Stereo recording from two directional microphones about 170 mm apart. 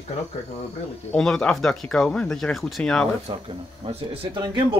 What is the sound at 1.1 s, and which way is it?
Speech, 5° left (ahead or behind).